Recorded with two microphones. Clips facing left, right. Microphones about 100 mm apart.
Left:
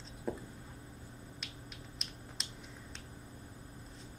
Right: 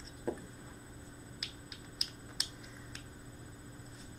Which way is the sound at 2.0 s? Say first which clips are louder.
Right 1 dB; 5° right (ahead or behind).